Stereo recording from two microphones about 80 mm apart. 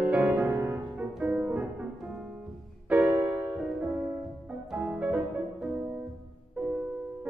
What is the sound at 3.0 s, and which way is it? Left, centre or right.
Music, right.